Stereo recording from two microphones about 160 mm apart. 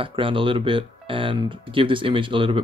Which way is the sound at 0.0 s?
35° right (ahead or behind).